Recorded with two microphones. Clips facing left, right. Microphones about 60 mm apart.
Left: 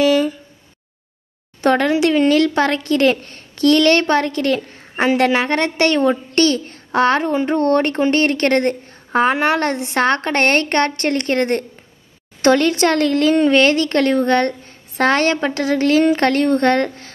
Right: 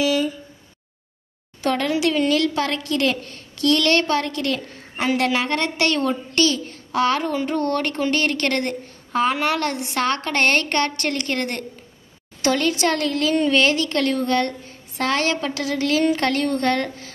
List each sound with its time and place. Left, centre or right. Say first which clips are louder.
0.0 s a sound: left 6 dB; left
1.6 s a child's voice: left 6 dB; left
6.3 s a child's voice: left 4 dB; left